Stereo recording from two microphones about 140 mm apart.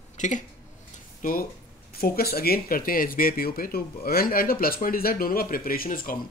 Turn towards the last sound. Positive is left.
turn(degrees=90)